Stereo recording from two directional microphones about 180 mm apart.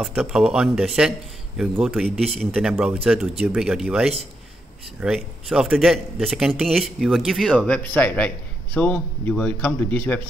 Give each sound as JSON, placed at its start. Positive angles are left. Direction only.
{"t": 0.0, "sound": "speech", "side_deg": -5}